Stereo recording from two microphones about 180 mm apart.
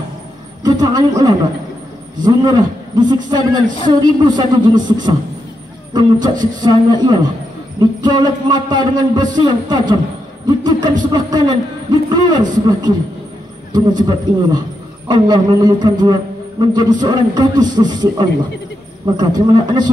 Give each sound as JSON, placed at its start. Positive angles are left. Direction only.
{"t": 0.7, "sound": "a man's voice", "side_deg": -20}